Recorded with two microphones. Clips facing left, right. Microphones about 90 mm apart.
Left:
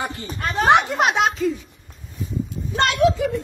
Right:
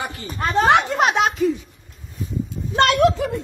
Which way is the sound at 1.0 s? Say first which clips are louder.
Right 1 dB; centre (ahead or behind).